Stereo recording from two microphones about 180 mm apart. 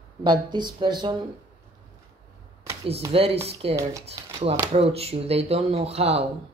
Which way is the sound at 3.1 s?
30° right (ahead or behind).